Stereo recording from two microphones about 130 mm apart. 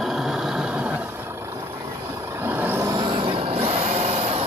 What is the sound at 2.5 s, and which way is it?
Vehicle, 15° right (ahead or behind).